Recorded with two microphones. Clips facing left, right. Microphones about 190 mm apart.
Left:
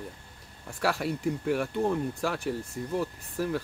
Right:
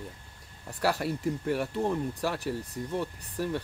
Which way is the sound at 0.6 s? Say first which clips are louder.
Even; centre (ahead or behind).